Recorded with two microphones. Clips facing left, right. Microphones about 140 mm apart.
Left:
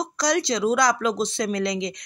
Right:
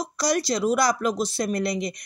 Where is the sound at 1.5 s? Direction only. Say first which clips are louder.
Left 1 dB; 90° left.